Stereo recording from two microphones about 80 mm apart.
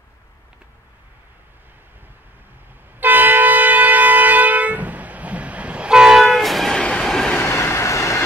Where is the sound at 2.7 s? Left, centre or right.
Right; by 6.8 s centre.